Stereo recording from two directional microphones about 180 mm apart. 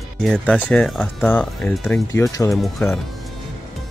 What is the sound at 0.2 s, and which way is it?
Speech, 5° left (ahead or behind).